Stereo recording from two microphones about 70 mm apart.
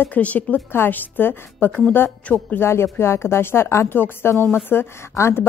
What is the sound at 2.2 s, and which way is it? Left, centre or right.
Speech, centre.